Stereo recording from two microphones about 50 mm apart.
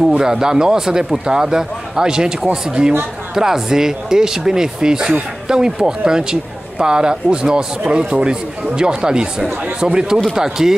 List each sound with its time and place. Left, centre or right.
0.2 s a man's voice: centre